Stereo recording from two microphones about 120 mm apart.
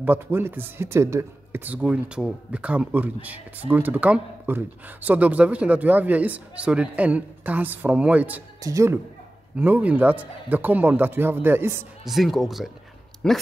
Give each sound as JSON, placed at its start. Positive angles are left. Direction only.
{"t": 0.0, "sound": "speech", "side_deg": -15}
{"t": 8.6, "sound": "speech", "side_deg": -25}
{"t": 9.6, "sound": "speech", "side_deg": -15}
{"t": 12.0, "sound": "speech", "side_deg": 0}